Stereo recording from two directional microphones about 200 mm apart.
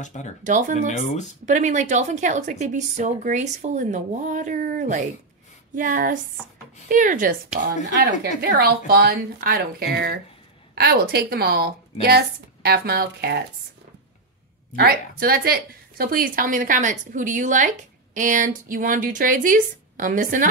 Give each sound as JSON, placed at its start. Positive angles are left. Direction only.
{"t": 0.0, "sound": "speech", "side_deg": 35}
{"t": 0.4, "sound": "a woman's voice", "side_deg": -40}
{"t": 0.7, "sound": "speech", "side_deg": 40}
{"t": 1.4, "sound": "a woman's voice", "side_deg": -35}
{"t": 7.9, "sound": "speech", "side_deg": -55}
{"t": 14.8, "sound": "a woman's voice", "side_deg": -50}